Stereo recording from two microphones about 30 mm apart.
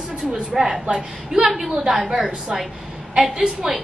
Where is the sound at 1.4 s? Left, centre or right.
Centre.